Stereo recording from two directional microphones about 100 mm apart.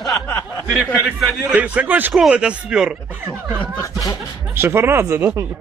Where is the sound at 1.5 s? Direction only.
15° right (ahead or behind).